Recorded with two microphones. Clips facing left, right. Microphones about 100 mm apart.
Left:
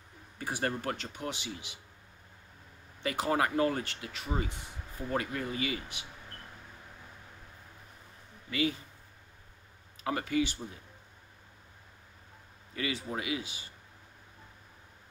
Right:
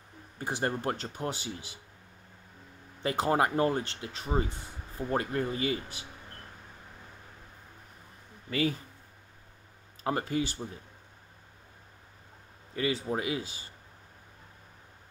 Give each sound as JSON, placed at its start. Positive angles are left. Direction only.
{"t": 0.4, "sound": "speech", "side_deg": -25}
{"t": 3.0, "sound": "speech", "side_deg": -30}
{"t": 8.5, "sound": "speech", "side_deg": -40}
{"t": 10.0, "sound": "speech", "side_deg": -35}
{"t": 12.7, "sound": "speech", "side_deg": -35}